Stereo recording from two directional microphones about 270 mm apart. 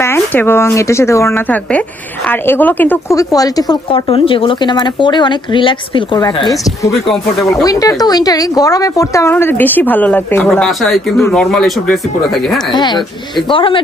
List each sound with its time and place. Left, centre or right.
0.0 s a woman's voice: centre
12.7 s a woman's voice: centre